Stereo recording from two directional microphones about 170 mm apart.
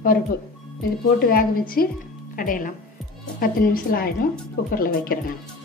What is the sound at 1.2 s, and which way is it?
A woman's voice, 60° left (ahead or behind).